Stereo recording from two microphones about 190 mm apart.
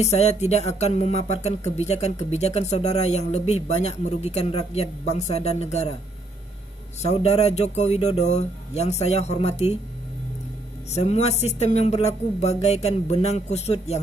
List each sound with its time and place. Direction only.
0.0 s speech: 35° left (ahead or behind)
7.0 s speech: 35° left (ahead or behind)
10.9 s speech: 35° left (ahead or behind)